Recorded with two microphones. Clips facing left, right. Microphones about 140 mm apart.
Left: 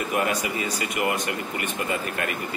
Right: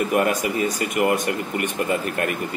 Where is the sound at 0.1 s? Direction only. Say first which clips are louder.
Right 5 dB; 50° right (ahead or behind).